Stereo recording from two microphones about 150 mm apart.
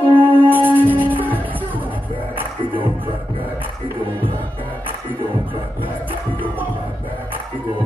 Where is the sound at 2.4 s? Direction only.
35° right (ahead or behind).